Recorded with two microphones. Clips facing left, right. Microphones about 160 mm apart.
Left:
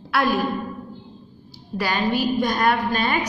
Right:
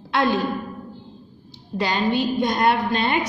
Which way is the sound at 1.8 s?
20° right (ahead or behind).